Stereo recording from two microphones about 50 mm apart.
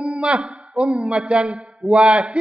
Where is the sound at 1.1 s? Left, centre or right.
Right.